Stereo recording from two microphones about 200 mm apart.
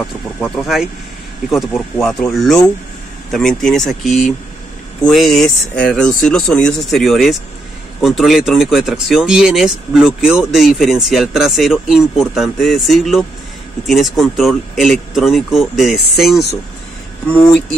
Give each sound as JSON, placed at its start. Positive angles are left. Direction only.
{"t": 0.0, "sound": "speech", "side_deg": 0}